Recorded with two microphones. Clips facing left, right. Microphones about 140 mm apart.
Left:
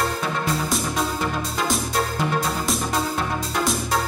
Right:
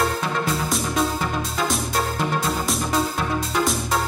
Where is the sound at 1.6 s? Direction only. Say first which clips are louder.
Left 1 dB; centre (ahead or behind).